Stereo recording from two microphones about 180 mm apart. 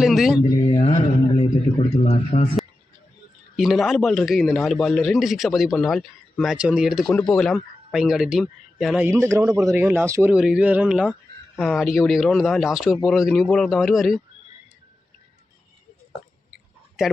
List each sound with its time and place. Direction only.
0.0 s speech: centre (ahead or behind)
0.4 s a man's voice: 25° left (ahead or behind)
3.5 s a man's voice: centre (ahead or behind)
16.4 s a sound: 5° right (ahead or behind)